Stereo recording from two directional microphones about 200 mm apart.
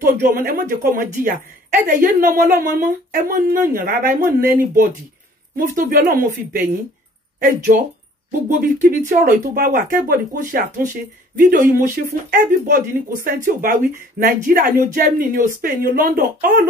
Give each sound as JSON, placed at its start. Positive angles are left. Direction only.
{"t": 0.0, "sound": "speech", "side_deg": -40}